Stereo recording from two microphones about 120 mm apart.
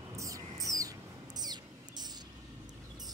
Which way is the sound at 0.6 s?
30° right (ahead or behind).